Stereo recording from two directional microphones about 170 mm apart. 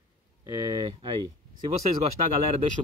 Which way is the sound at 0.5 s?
20° right (ahead or behind).